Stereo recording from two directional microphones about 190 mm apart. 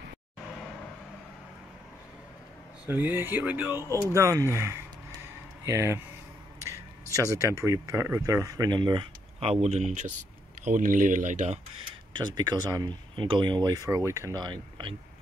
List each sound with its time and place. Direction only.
2.9 s speech: 10° right (ahead or behind)
6.6 s a sound: 15° right (ahead or behind)
7.3 s speech: 15° right (ahead or behind); by 11.6 s 40° right (ahead or behind)
12.1 s speech: 25° right (ahead or behind)